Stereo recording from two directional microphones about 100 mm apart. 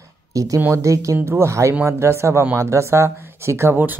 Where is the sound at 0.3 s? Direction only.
35° right (ahead or behind).